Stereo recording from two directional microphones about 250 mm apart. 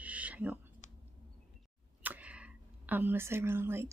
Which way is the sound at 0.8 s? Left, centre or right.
Left.